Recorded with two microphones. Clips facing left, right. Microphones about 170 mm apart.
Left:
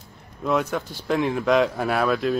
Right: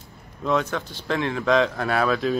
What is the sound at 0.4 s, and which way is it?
A man's voice, 5° left (ahead or behind).